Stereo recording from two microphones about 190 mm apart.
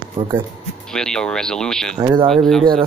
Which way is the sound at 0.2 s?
30° right (ahead or behind).